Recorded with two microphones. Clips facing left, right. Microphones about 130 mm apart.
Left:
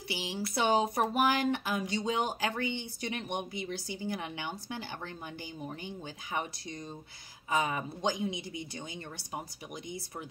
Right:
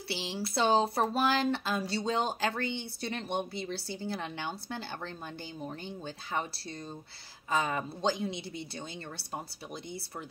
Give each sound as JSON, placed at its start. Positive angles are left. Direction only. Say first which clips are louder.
{"t": 0.1, "sound": "speech", "louder": "right 1 dB", "side_deg": 15}
{"t": 7.5, "sound": "speech", "louder": "even", "side_deg": 15}